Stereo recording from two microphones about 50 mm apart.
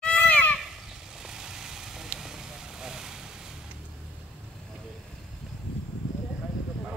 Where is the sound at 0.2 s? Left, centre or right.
Left.